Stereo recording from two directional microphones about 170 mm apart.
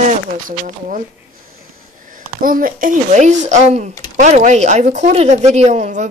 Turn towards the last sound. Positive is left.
turn(degrees=-40)  # may be behind; listen again after turning